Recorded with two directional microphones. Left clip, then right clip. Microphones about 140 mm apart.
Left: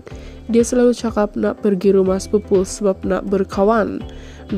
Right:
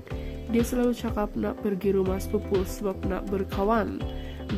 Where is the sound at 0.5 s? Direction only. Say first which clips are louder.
Left 12 dB; 35° left (ahead or behind).